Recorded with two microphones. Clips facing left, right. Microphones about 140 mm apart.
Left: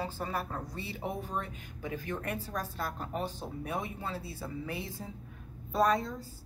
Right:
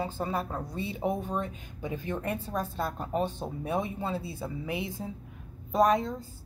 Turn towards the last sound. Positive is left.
turn(degrees=-15)  # may be behind; listen again after turning